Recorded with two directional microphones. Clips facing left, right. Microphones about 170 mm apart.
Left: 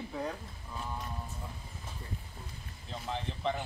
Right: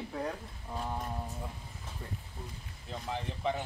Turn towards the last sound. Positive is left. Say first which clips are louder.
# even
turn(degrees=-10)  # may be behind; listen again after turning